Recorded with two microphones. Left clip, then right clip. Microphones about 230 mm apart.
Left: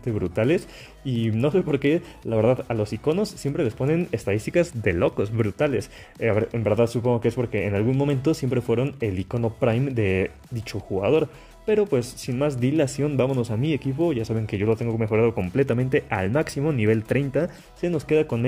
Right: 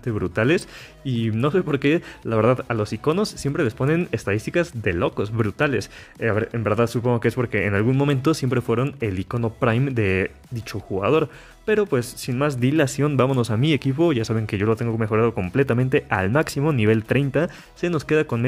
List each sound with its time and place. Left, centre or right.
0.0 s speech: centre